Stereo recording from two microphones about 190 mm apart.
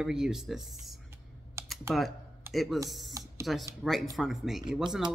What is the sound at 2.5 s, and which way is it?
Speech, centre (ahead or behind).